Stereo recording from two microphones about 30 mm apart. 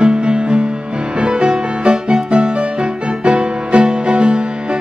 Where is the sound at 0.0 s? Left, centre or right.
Right.